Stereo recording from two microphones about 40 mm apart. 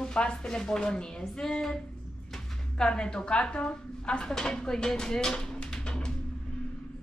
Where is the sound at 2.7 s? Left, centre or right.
Centre.